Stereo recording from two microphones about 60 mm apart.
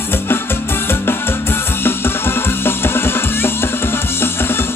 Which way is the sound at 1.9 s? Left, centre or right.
Left.